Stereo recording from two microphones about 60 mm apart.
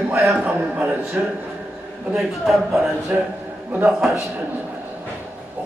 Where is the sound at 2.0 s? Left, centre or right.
Centre.